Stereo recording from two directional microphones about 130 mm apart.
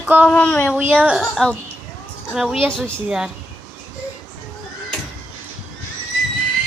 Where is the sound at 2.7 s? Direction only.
10° left (ahead or behind).